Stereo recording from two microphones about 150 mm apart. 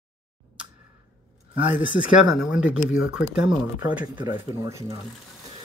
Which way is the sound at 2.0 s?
5° right (ahead or behind).